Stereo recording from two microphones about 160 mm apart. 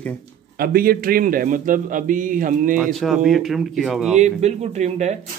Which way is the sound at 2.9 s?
Centre (ahead or behind).